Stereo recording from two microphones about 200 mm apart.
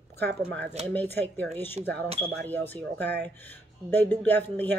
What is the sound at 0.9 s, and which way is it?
Speech, 10° left (ahead or behind).